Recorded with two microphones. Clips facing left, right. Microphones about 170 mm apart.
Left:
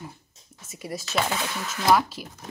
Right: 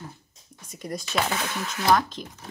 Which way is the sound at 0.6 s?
5° left (ahead or behind).